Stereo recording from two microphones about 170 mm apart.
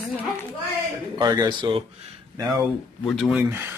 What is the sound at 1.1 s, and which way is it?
Speech, 25° right (ahead or behind).